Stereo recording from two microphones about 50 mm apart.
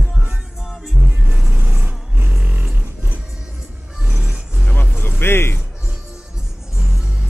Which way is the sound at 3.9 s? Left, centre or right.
Centre.